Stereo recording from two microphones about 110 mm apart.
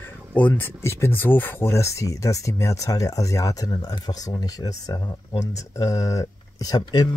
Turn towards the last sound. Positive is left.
turn(degrees=35)  # may be behind; listen again after turning